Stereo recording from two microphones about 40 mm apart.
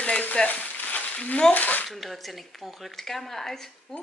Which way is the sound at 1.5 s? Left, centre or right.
Left.